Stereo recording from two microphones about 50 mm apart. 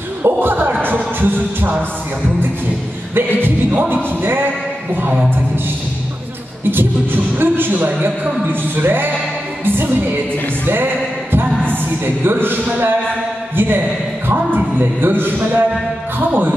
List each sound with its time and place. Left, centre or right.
0.2 s music: right
3.2 s speech: right
6.7 s speech: right
11.7 s speech: right